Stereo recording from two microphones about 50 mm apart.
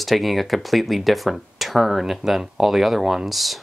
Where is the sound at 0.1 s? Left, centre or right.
Centre.